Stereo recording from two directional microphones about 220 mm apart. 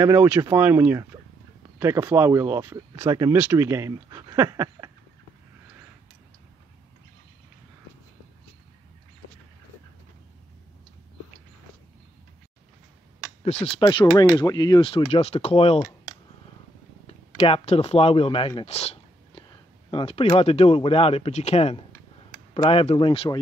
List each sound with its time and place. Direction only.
0.0 s speech: 10° right (ahead or behind)
13.4 s speech: 30° left (ahead or behind)
17.4 s speech: 25° left (ahead or behind)